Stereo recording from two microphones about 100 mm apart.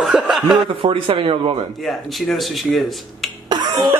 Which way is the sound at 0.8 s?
60° right (ahead or behind).